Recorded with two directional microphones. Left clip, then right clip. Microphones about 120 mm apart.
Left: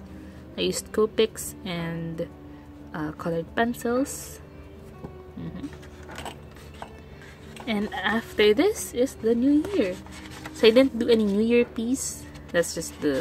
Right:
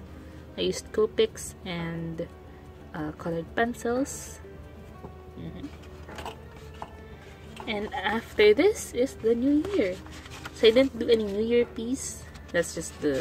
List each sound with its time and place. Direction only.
0.6 s a woman's voice: 20° left (ahead or behind)
7.8 s a woman's voice: 15° left (ahead or behind)
10.6 s a woman's voice: 30° left (ahead or behind)